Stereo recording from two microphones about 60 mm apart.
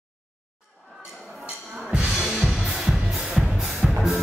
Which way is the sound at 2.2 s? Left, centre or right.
Centre.